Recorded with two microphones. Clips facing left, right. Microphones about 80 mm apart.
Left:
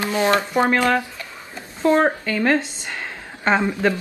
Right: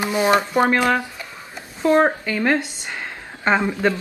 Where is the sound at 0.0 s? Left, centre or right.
Centre.